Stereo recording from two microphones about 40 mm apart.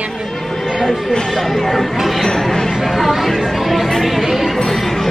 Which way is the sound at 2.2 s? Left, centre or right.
Centre.